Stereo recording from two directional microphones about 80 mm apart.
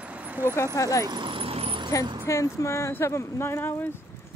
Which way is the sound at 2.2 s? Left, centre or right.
Left.